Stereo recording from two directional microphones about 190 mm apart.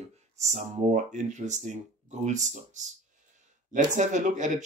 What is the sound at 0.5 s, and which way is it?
Speech, 35° right (ahead or behind).